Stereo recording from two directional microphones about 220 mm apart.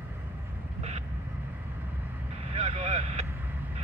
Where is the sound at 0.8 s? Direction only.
30° right (ahead or behind).